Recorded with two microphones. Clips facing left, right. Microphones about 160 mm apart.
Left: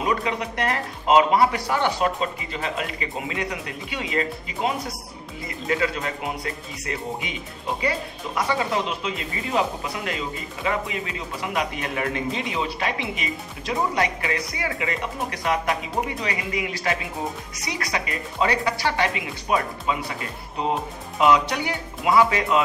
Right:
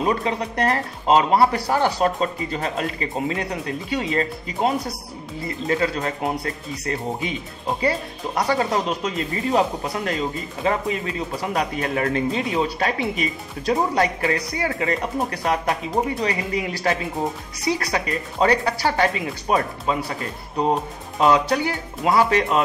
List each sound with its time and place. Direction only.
0.0 s speech: 35° right (ahead or behind)
5.7 s speech: 35° right (ahead or behind)
8.4 s speech: 40° right (ahead or behind)
21.2 s speech: 35° right (ahead or behind)